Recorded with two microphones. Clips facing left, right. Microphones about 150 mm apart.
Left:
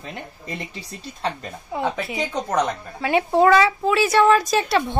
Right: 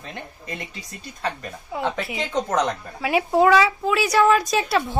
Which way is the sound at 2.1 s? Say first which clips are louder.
Right 1 dB; 10° left (ahead or behind).